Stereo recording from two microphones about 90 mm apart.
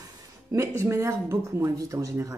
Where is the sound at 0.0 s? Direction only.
35° right (ahead or behind).